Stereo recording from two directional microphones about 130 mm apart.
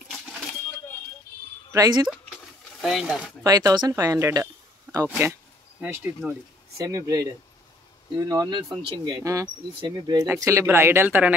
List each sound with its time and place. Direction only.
1.7 s speech: 25° right (ahead or behind)
2.8 s speech: 5° right (ahead or behind)
3.4 s speech: 30° right (ahead or behind)
5.1 s speech: 15° right (ahead or behind)
6.8 s speech: 25° right (ahead or behind)
10.2 s speech: 20° right (ahead or behind)